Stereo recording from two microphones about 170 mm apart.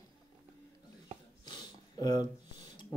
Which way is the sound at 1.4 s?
25° left (ahead or behind).